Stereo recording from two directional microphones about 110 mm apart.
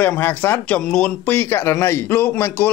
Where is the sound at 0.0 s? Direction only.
15° left (ahead or behind).